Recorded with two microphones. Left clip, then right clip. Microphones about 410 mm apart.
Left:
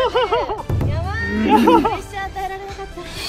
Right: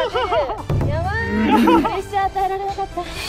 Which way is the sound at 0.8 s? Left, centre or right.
Right.